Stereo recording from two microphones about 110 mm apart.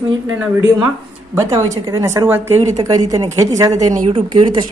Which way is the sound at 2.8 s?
35° right (ahead or behind).